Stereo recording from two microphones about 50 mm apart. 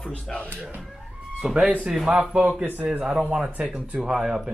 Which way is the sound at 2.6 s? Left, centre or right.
Right.